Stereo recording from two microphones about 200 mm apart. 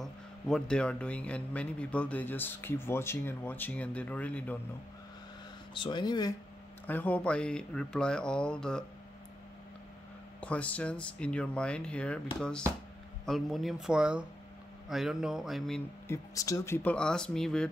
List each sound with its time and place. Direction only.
0.0 s speech: 5° left (ahead or behind)
5.8 s speech: 20° left (ahead or behind)
6.9 s speech: 10° left (ahead or behind)
10.4 s speech: 5° left (ahead or behind)
16.1 s speech: 15° left (ahead or behind)